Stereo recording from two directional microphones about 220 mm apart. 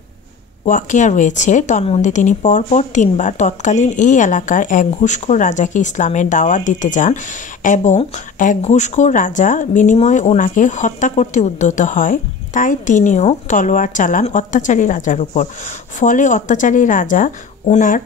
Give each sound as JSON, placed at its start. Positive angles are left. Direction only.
{"t": 0.7, "sound": "speech", "side_deg": 35}